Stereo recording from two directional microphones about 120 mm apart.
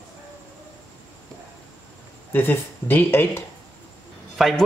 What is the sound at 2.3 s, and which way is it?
Speech, 20° left (ahead or behind).